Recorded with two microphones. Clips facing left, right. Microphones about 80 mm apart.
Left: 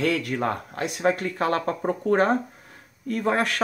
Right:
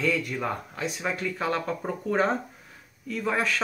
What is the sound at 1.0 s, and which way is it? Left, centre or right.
Speech, left.